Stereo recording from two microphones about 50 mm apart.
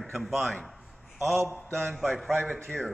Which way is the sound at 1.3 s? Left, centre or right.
Right.